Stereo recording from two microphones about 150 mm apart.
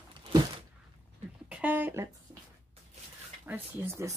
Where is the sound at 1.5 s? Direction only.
10° right (ahead or behind).